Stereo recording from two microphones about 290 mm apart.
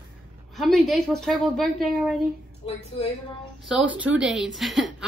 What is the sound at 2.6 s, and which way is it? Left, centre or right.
Speech, centre.